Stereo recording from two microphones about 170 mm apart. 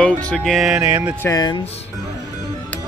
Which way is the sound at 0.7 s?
15° right (ahead or behind).